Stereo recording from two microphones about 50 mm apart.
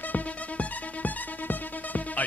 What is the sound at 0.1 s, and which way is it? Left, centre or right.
Music, left.